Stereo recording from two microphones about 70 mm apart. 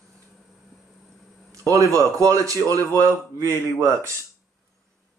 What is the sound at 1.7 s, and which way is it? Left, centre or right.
Speech, right.